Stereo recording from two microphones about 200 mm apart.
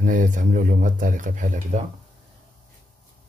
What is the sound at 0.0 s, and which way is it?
Speech, 40° right (ahead or behind).